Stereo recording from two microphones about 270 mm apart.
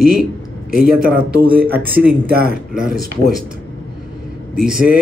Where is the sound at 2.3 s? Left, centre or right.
Right.